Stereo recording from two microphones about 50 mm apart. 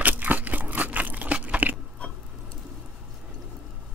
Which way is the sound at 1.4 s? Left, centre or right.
Right.